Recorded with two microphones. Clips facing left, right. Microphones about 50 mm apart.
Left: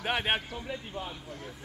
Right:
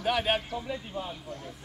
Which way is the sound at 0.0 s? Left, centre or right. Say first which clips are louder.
Right 2 dB; left.